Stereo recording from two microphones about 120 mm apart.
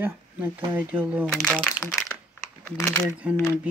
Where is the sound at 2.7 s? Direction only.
20° left (ahead or behind).